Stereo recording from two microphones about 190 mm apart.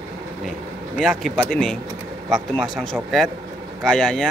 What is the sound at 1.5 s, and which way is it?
Speech, 5° left (ahead or behind).